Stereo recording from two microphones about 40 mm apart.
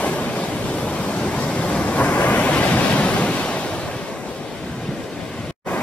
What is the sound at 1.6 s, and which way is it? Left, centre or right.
Waves, left.